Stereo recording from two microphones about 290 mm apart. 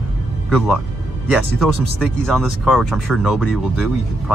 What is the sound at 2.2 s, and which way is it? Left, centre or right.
Speech, centre.